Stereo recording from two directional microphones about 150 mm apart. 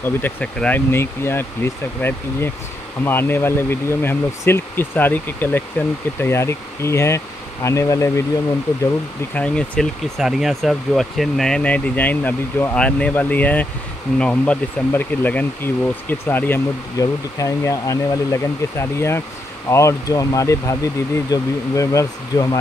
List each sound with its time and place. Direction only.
0.0 s speech: 10° left (ahead or behind)
9.3 s speech: 5° left (ahead or behind)